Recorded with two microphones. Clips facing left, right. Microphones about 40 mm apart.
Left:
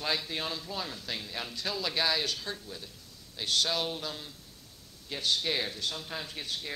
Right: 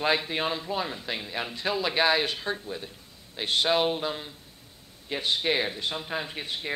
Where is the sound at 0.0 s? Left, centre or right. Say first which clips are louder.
Right 7 dB; right.